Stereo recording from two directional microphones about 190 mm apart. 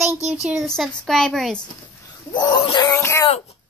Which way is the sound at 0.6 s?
Centre (ahead or behind).